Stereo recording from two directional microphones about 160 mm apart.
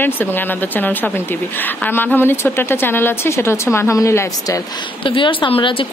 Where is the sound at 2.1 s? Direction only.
15° left (ahead or behind).